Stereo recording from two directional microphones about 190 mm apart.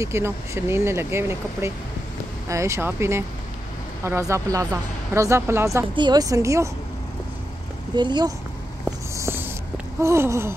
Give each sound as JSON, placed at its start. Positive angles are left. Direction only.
{"t": 0.0, "sound": "speech", "side_deg": -15}
{"t": 7.9, "sound": "speech", "side_deg": -25}
{"t": 9.1, "sound": "a sound", "side_deg": -15}
{"t": 10.0, "sound": "speech", "side_deg": -15}